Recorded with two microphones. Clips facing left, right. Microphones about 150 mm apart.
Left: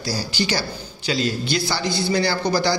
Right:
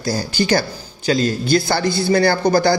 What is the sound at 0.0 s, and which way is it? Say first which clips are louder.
A man's voice: right 5 dB; 50° right (ahead or behind).